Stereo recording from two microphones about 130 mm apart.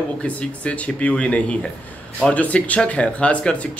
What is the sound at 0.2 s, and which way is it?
Speech, 10° left (ahead or behind).